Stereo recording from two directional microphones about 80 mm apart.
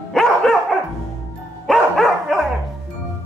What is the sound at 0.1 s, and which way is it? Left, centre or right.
Dog, centre.